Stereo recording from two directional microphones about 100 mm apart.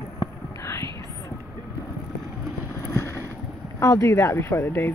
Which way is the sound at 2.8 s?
30° left (ahead or behind).